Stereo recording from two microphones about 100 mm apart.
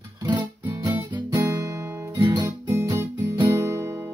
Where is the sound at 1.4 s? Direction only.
35° right (ahead or behind).